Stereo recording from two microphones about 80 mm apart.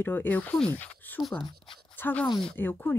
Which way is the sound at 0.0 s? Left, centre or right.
Left.